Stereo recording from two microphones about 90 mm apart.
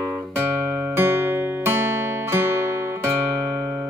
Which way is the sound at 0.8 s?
25° right (ahead or behind).